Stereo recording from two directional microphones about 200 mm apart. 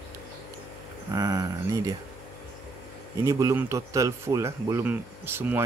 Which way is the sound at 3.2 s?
15° right (ahead or behind).